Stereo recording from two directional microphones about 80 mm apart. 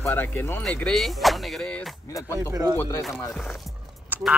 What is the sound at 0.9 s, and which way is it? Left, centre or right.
Speech, centre.